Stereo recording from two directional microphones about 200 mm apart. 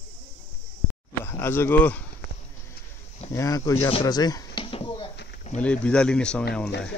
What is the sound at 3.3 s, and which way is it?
Speech, 15° left (ahead or behind).